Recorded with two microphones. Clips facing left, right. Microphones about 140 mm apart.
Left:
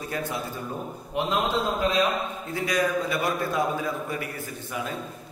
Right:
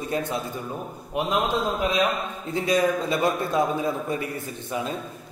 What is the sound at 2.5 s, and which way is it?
A man's voice, 25° right (ahead or behind).